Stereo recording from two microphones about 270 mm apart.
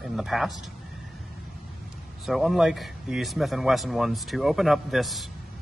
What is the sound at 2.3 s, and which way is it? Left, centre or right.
Speech, centre.